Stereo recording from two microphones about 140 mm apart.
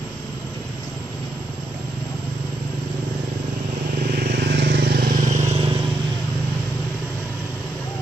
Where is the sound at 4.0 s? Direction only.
90° right; by 5.5 s 65° right (ahead or behind).